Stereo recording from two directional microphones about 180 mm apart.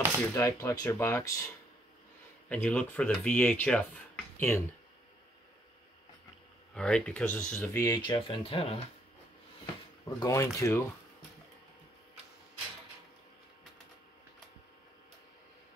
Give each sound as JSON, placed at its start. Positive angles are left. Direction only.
{"t": 0.3, "sound": "speech", "side_deg": 15}
{"t": 2.5, "sound": "speech", "side_deg": 5}
{"t": 6.7, "sound": "speech", "side_deg": 5}
{"t": 10.0, "sound": "speech", "side_deg": 20}